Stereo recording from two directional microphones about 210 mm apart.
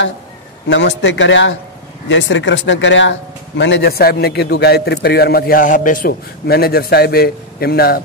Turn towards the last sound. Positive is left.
turn(degrees=45)  # may be behind; listen again after turning